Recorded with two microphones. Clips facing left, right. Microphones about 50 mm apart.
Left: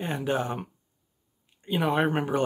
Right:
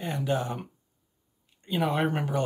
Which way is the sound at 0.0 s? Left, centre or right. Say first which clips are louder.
Left 1 dB; left.